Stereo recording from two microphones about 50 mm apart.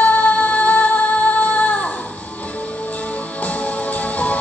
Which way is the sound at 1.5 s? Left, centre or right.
Left.